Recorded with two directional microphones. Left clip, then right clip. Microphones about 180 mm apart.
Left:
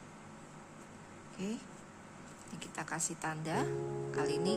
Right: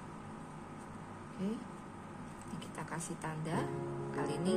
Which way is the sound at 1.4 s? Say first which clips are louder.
Even; 40° left (ahead or behind).